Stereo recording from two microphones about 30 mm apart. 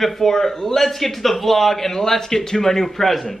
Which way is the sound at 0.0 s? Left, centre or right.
Centre.